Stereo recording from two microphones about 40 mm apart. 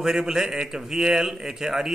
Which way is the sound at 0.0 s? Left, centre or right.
Centre.